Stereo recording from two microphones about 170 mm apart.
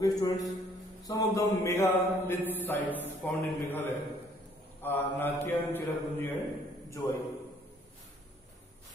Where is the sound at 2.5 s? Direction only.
10° left (ahead or behind).